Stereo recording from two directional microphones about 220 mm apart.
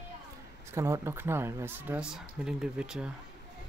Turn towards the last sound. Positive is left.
turn(degrees=-5)  # may be behind; listen again after turning